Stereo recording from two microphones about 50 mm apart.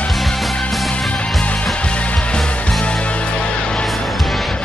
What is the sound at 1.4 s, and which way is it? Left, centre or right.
Music, left.